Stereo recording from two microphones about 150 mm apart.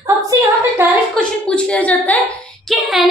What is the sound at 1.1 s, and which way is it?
A woman's voice, 5° left (ahead or behind).